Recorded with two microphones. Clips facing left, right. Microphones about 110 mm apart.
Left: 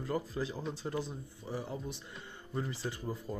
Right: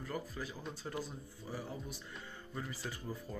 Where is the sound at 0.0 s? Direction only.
25° left (ahead or behind).